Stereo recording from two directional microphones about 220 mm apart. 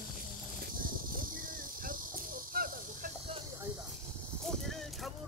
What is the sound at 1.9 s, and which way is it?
Cricket, 40° right (ahead or behind).